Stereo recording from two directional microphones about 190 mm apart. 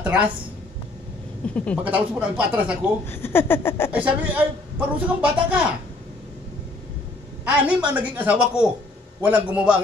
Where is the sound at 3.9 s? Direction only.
5° right (ahead or behind).